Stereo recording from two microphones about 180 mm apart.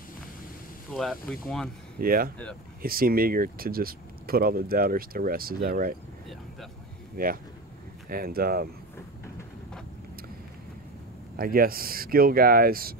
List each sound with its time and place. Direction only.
0.9 s speech: centre (ahead or behind)
2.0 s speech: 55° right (ahead or behind)
7.2 s speech: 55° right (ahead or behind)
11.3 s speech: 55° right (ahead or behind)